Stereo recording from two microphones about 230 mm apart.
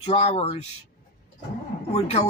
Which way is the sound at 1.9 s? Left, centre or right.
Left.